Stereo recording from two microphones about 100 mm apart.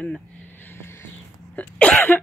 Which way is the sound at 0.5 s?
20° left (ahead or behind).